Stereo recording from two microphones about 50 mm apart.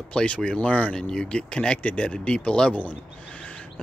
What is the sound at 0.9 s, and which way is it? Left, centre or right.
Speech, centre.